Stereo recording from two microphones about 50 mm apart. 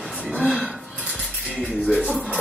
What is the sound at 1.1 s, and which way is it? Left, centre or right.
Music, left.